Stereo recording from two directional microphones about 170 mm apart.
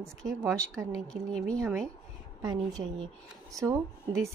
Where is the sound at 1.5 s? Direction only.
15° right (ahead or behind).